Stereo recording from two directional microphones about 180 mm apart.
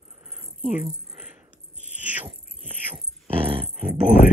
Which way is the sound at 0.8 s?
15° right (ahead or behind).